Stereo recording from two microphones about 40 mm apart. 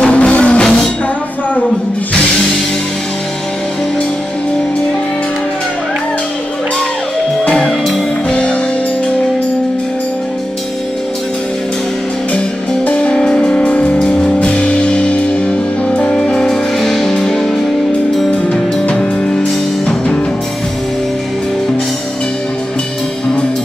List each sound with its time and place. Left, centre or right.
0.0 s music: left
8.3 s music: left
12.8 s music: left
16.3 s music: centre
18.3 s music: left